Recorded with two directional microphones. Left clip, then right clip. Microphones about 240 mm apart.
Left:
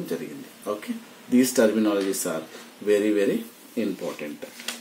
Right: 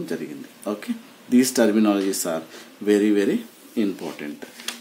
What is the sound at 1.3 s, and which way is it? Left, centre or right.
Speech, right.